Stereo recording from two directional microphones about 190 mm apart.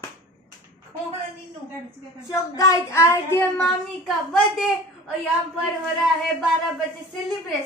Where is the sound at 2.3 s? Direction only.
20° left (ahead or behind).